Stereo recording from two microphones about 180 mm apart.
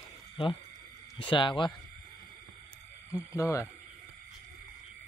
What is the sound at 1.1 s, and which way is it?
Speech, 30° left (ahead or behind).